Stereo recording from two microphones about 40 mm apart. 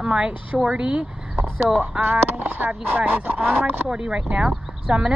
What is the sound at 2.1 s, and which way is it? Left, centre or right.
Speech, right.